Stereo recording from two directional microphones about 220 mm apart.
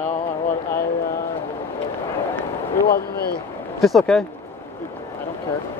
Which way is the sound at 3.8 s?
Centre (ahead or behind).